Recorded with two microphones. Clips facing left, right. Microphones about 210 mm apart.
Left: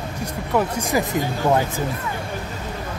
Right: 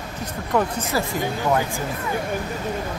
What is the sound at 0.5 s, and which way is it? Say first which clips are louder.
Speech: left 1 dB; 10° left (ahead or behind).